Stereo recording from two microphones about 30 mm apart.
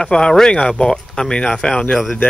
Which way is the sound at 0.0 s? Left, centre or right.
Left.